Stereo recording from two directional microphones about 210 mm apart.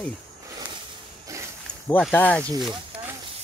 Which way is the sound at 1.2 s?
15° right (ahead or behind).